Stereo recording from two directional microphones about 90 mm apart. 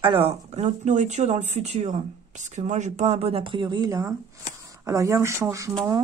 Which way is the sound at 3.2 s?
80° right.